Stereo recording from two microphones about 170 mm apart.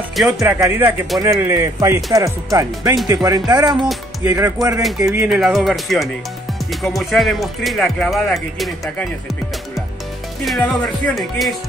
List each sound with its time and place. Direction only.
0.4 s speech: 15° right (ahead or behind)
3.8 s speech: 5° right (ahead or behind)
4.4 s speech: 20° right (ahead or behind); by 8.9 s centre (ahead or behind)
10.4 s speech: centre (ahead or behind)